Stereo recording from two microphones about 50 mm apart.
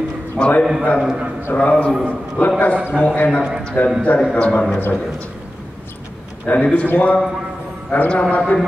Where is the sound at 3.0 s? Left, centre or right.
Left.